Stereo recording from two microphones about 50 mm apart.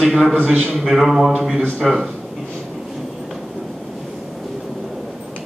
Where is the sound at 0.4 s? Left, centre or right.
Centre.